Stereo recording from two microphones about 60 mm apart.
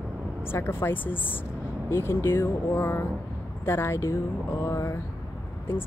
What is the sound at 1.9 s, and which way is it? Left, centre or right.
Speech, left.